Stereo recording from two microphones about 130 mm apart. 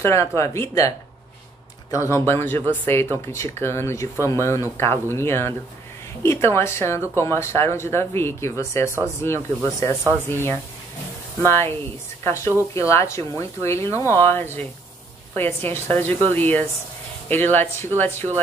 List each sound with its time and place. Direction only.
0.0 s speech: 20° left (ahead or behind)